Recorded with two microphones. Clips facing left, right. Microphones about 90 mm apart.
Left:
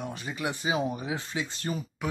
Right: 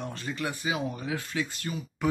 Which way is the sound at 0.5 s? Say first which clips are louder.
Left 2 dB; 25° left (ahead or behind).